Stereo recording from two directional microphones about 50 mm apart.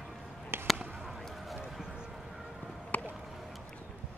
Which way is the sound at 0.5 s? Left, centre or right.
Right.